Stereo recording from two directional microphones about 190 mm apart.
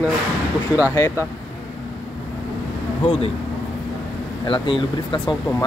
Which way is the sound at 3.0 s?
30° left (ahead or behind).